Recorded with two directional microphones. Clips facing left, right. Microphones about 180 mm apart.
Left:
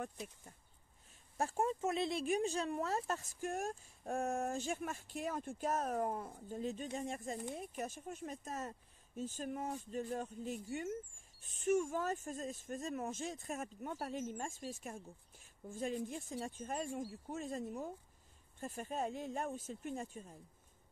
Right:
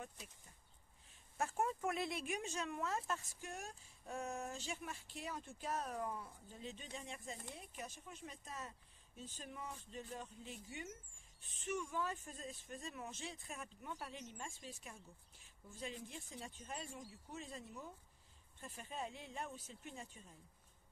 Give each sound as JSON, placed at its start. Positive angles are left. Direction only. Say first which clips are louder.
{"t": 1.4, "sound": "speech", "louder": "left 4 dB", "side_deg": 30}